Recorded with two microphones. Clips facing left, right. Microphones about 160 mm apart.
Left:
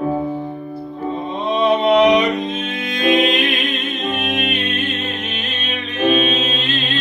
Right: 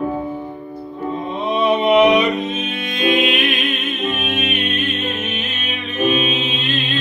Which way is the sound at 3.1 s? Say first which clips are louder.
Left 2 dB; 30° left (ahead or behind).